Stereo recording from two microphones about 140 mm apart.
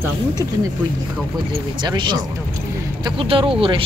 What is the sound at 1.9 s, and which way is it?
Speech, 30° right (ahead or behind).